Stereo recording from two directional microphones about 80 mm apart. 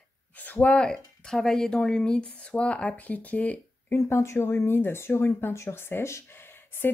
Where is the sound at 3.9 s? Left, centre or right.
Left.